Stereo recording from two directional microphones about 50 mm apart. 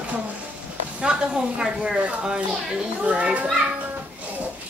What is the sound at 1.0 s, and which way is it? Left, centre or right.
A child's voice, centre.